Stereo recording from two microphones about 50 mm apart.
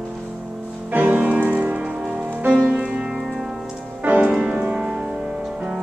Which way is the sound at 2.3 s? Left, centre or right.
Right.